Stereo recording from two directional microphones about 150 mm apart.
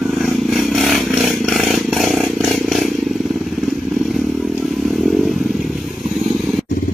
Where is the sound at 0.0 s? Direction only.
Centre (ahead or behind).